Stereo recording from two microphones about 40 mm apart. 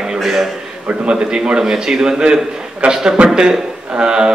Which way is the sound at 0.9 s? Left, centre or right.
Right.